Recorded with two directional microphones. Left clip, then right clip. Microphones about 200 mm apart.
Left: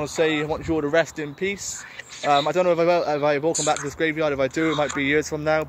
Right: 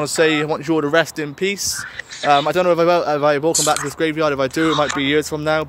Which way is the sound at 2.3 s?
20° right (ahead or behind).